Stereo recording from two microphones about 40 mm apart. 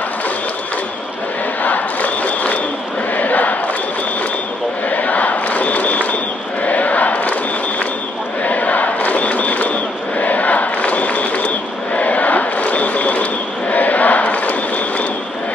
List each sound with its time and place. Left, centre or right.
1.6 s crowd: left
4.8 s crowd: left
6.6 s a sound: left
8.5 s crowd: left